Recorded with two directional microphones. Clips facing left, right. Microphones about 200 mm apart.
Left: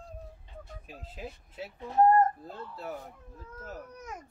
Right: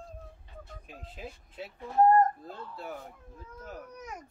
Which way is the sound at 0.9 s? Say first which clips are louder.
Left 1 dB; 5° left (ahead or behind).